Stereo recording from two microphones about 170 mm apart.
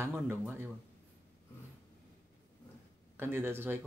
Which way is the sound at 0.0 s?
15° right (ahead or behind).